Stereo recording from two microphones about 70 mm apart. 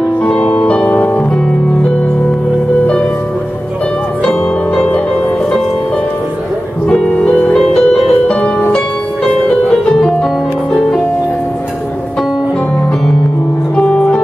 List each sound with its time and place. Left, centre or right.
0.5 s music: centre
4.8 s music: left
6.9 s music: centre
8.3 s music: centre
13.7 s music: centre